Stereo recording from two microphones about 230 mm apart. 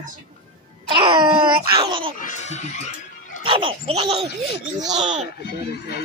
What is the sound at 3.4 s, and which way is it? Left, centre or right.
A child's voice, right.